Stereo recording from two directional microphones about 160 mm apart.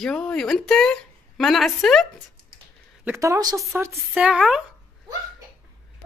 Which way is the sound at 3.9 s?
5° right (ahead or behind).